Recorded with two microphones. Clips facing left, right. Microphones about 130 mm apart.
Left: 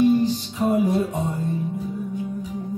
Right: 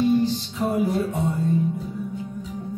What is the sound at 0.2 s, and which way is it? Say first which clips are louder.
Music: left 1 dB; 15° left (ahead or behind).